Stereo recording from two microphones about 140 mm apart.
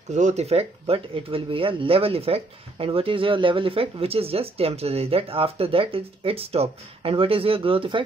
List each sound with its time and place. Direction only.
0.1 s speech: 55° right (ahead or behind); by 8.0 s 40° right (ahead or behind)